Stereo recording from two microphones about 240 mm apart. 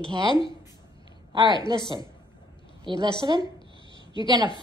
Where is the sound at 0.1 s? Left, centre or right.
Centre.